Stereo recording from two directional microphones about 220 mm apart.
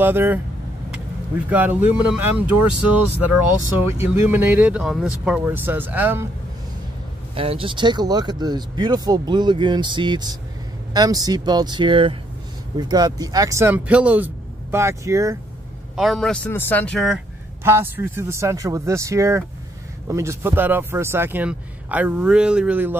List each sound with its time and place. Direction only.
0.0 s speech: 10° right (ahead or behind)
1.5 s speech: 5° right (ahead or behind)
7.3 s speech: 25° right (ahead or behind)
16.0 s speech: centre (ahead or behind)
17.6 s speech: 10° right (ahead or behind)